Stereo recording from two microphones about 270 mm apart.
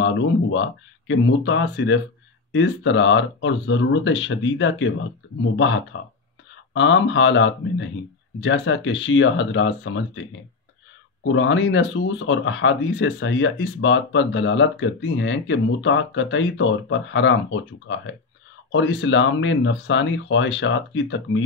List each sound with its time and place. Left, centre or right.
0.0 s speech: left
11.3 s speech: left